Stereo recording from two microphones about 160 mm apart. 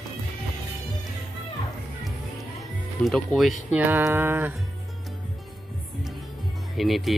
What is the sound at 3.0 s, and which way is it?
Speech, centre (ahead or behind).